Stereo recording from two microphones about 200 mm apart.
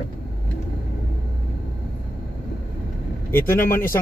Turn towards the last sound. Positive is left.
turn(degrees=10)  # may be behind; listen again after turning